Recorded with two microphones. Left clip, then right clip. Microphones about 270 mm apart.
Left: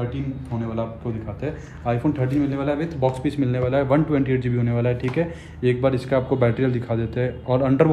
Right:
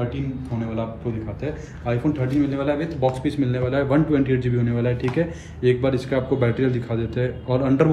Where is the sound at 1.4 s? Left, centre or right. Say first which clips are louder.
Left 3 dB; centre.